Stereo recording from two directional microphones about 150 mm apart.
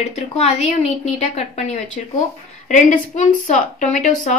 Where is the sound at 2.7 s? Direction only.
55° left (ahead or behind).